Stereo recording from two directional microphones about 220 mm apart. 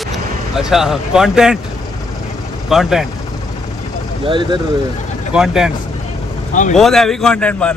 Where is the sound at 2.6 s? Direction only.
Centre (ahead or behind).